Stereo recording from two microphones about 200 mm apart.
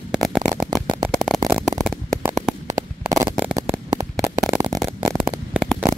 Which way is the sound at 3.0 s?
15° right (ahead or behind).